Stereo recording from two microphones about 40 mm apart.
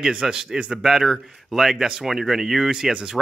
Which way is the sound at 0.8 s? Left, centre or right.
Centre.